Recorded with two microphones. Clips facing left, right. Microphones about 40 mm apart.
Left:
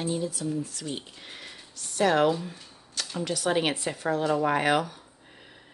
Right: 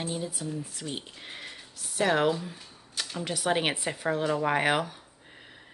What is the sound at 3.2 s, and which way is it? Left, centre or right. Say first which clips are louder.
Speech: left 1 dB; centre.